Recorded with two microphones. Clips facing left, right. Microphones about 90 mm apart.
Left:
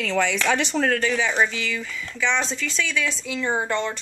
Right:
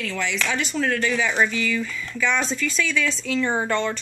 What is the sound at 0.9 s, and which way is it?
Speech, 35° left (ahead or behind).